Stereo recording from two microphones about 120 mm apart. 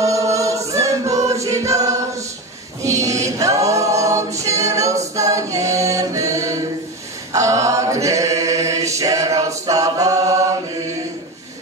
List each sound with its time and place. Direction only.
0.0 s choir: 25° right (ahead or behind)
2.8 s a capella: 25° right (ahead or behind)
7.3 s chant: 25° right (ahead or behind)